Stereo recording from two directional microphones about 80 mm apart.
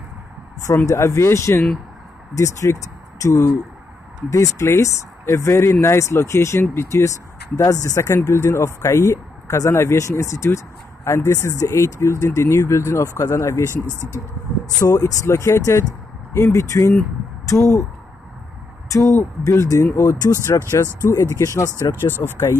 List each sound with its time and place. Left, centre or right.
0.8 s speech: left
14.8 s speech: left
18.9 s speech: left
20.2 s speech: left
21.8 s speech: left